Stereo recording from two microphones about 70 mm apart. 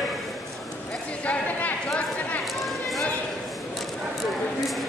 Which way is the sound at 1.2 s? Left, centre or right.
Left.